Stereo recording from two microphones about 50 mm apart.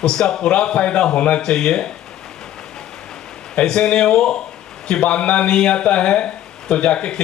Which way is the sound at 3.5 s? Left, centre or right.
Centre.